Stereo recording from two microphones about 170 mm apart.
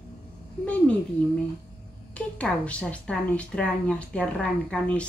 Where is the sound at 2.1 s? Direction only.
5° left (ahead or behind).